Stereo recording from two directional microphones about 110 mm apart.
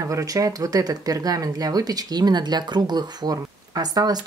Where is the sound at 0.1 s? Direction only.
30° right (ahead or behind).